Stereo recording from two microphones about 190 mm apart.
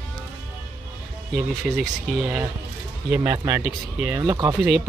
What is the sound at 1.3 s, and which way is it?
Speech, centre (ahead or behind).